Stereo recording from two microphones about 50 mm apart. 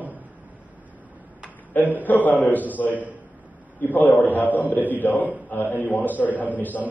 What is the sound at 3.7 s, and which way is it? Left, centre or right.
A man's voice, left.